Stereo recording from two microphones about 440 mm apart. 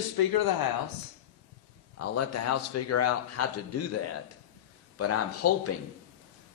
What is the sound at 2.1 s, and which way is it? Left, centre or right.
A man's voice, left.